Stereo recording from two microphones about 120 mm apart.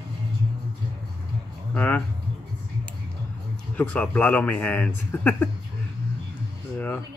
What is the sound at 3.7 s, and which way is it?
A man's voice, 10° left (ahead or behind).